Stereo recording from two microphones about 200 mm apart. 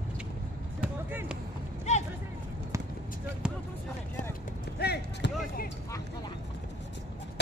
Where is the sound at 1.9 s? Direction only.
35° left (ahead or behind).